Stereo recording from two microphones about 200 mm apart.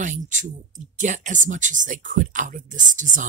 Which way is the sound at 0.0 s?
40° right (ahead or behind).